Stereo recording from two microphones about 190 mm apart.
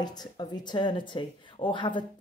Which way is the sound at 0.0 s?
20° left (ahead or behind).